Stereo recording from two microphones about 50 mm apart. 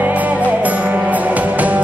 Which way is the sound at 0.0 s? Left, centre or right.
Right.